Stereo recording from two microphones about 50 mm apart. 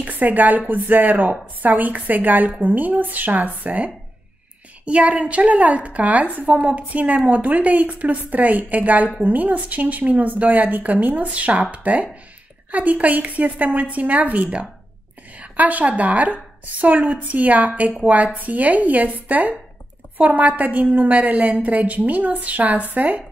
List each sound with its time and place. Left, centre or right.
0.0 s a woman's voice: right